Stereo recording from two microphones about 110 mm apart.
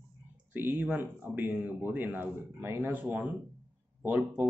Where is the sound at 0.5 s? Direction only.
15° right (ahead or behind).